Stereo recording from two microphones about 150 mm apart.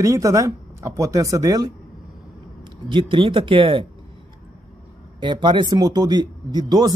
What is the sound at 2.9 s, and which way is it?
Speech, 35° right (ahead or behind).